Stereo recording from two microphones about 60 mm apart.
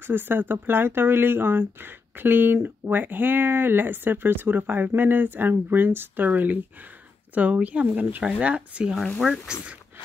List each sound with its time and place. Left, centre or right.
0.0 s speech: right; by 9.8 s centre